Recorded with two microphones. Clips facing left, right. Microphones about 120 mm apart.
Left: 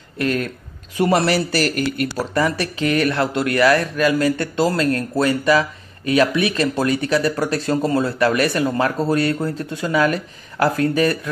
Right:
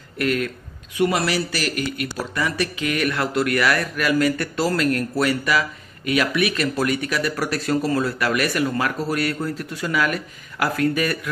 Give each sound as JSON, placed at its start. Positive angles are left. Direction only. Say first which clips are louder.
{"t": 0.2, "sound": "speech", "louder": "left 1 dB", "side_deg": 30}